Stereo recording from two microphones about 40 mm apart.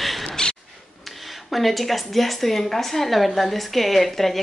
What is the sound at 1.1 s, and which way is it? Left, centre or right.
Speech, centre.